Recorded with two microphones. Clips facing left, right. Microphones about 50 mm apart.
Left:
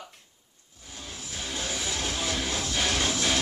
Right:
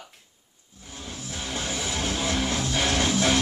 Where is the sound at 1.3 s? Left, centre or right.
Right.